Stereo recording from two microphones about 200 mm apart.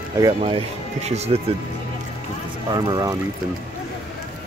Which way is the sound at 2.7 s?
20° right (ahead or behind).